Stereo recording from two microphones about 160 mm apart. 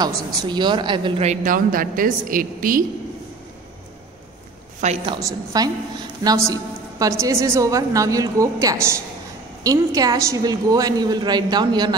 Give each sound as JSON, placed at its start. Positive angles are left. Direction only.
{"t": 0.0, "sound": "a woman's voice", "side_deg": -30}
{"t": 1.2, "sound": "a woman's voice", "side_deg": -50}
{"t": 4.7, "sound": "a woman's voice", "side_deg": -45}
{"t": 5.0, "sound": "a woman's voice", "side_deg": -25}